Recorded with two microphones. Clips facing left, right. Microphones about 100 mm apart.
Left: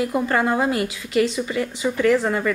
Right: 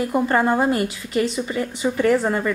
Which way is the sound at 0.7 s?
35° right (ahead or behind).